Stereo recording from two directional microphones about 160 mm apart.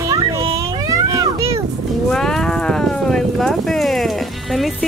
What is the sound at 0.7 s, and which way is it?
Cat, 20° right (ahead or behind).